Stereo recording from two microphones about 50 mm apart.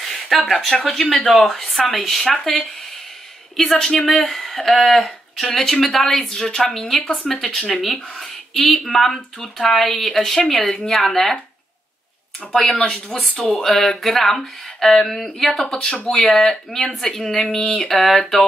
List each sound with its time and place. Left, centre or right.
0.1 s a woman's voice: centre
12.5 s a woman's voice: centre
15.6 s speech: centre
16.1 s speech: centre